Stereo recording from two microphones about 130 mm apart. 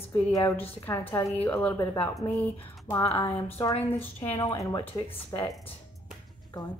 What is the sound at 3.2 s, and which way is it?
A woman's voice, 30° left (ahead or behind).